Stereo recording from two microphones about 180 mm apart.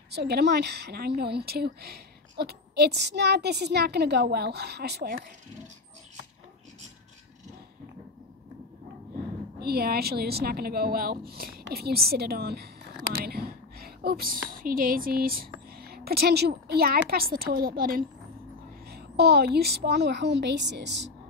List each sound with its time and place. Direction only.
0.1 s a woman's voice: 65° right (ahead or behind)
9.6 s a woman's voice: 60° right (ahead or behind)